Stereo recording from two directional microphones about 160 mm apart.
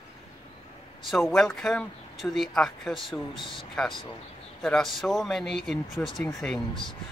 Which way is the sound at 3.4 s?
30° left (ahead or behind).